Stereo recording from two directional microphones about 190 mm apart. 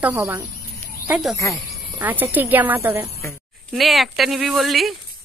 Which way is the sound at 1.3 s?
15° left (ahead or behind).